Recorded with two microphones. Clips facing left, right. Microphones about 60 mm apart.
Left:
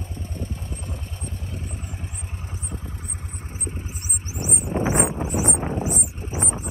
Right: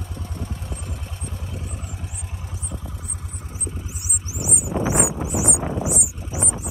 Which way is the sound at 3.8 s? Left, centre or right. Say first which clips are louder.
Even; left.